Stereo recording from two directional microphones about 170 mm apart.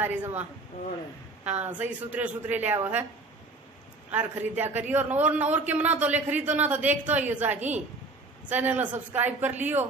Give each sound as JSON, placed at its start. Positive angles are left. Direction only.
{"t": 0.0, "sound": "a man's voice", "side_deg": -10}
{"t": 1.6, "sound": "a man's voice", "side_deg": -10}
{"t": 4.1, "sound": "a man's voice", "side_deg": -10}